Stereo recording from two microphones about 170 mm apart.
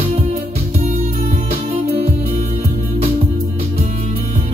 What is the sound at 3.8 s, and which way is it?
Music, 45° right (ahead or behind).